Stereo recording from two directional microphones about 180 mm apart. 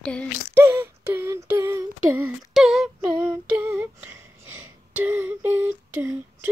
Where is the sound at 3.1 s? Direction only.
25° right (ahead or behind).